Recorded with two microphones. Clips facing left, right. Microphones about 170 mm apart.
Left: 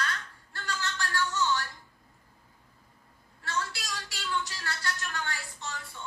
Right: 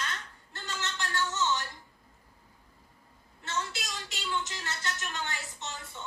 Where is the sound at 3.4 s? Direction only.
20° right (ahead or behind).